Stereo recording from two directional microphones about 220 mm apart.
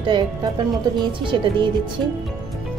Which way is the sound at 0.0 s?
20° right (ahead or behind).